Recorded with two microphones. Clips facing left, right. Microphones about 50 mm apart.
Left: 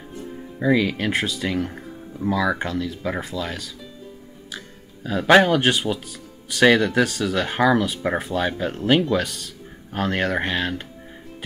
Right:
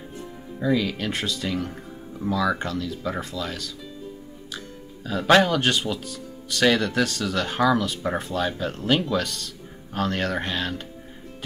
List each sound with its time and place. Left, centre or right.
0.6 s speech: left